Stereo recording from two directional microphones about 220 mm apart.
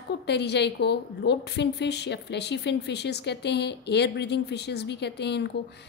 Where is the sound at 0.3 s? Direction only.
50° left (ahead or behind).